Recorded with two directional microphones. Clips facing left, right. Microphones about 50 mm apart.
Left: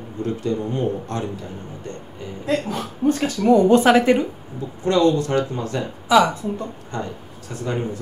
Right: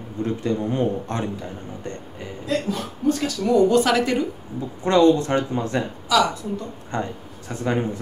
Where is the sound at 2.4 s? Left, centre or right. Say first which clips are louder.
Left 2 dB; left.